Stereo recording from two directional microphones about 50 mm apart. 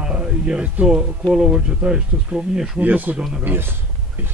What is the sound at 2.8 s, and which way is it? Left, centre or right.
Speech, right.